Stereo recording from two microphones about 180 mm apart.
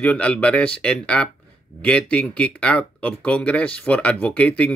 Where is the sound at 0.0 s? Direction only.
5° left (ahead or behind).